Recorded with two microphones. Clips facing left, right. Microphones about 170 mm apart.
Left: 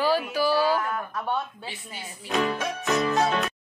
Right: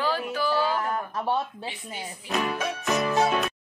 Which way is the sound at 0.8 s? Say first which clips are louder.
Right 2 dB; 30° right (ahead or behind).